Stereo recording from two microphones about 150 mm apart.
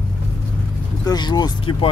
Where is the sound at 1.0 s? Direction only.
25° left (ahead or behind).